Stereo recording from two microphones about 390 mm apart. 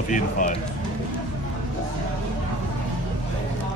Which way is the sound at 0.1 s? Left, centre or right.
Centre.